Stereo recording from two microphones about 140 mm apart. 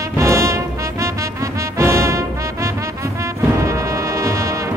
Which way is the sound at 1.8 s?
20° right (ahead or behind).